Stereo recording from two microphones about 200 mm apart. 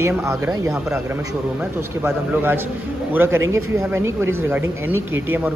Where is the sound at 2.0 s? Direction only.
10° right (ahead or behind).